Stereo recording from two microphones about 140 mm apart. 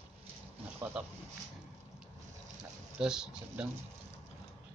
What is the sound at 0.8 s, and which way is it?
Speech, 10° right (ahead or behind).